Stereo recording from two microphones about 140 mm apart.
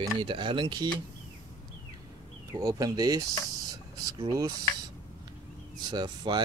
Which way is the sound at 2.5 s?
25° right (ahead or behind).